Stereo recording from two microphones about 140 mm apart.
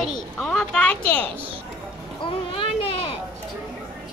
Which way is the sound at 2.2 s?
40° left (ahead or behind).